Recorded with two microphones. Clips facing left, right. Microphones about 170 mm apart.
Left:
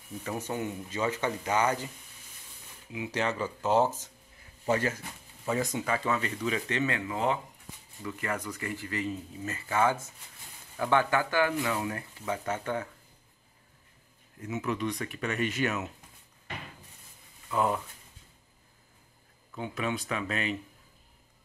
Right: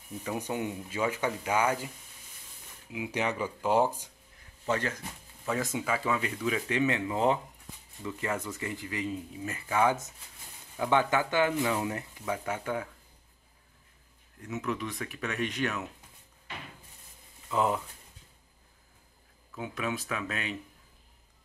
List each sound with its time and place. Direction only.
0.2 s speech: 15° right (ahead or behind)
2.9 s speech: 10° right (ahead or behind)
4.6 s speech: 10° left (ahead or behind); by 12.0 s 20° right (ahead or behind)
12.3 s speech: 10° right (ahead or behind)
14.4 s speech: centre (ahead or behind)
17.6 s speech: 15° right (ahead or behind)
19.5 s speech: 5° right (ahead or behind)